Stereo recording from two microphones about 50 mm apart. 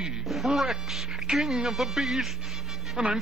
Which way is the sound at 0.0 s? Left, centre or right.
Centre.